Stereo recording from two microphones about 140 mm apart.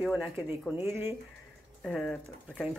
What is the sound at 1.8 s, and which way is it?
Speech, 5° left (ahead or behind).